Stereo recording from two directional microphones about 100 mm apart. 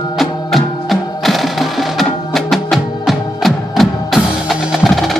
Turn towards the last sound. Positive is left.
turn(degrees=0)  # may be behind; listen again after turning